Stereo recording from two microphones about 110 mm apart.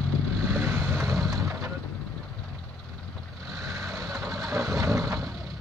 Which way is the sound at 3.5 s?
25° right (ahead or behind).